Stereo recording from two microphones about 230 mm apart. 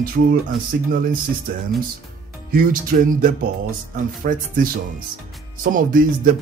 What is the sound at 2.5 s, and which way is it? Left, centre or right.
Speech, right.